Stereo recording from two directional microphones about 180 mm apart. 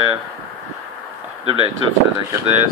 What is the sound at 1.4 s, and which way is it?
Speech, 30° right (ahead or behind).